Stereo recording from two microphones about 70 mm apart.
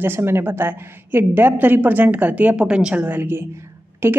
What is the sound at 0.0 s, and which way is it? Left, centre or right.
A woman's voice, right.